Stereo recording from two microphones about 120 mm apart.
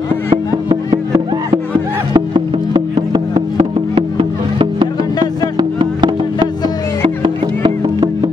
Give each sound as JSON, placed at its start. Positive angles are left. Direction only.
{"t": 2.1, "sound": "music", "side_deg": -40}